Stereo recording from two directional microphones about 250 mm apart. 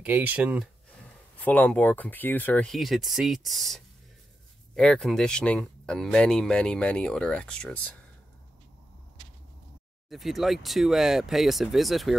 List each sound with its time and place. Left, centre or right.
0.0 s speech: centre
1.4 s speech: centre
10.0 s speech: centre